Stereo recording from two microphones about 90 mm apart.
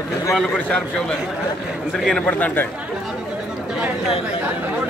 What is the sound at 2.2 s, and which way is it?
Speech, 20° left (ahead or behind).